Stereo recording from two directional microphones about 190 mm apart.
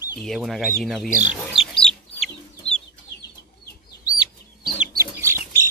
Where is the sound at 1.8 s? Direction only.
5° left (ahead or behind).